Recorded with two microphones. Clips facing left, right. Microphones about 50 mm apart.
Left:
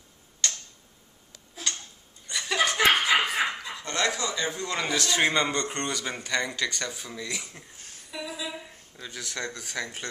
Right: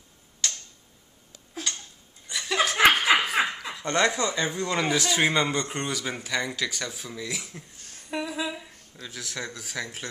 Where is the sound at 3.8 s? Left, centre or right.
Right.